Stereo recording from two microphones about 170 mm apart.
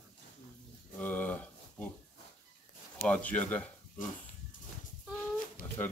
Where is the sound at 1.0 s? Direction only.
10° left (ahead or behind).